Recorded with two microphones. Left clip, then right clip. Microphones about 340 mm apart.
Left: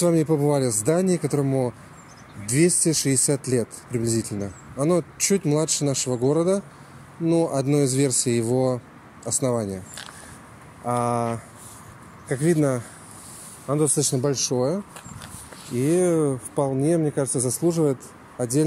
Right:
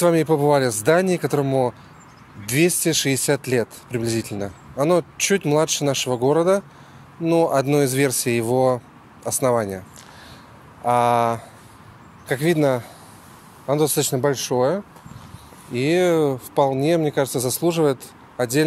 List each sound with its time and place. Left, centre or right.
0.0 s speech: right
10.9 s speech: right
14.2 s speech: right
14.5 s speech: right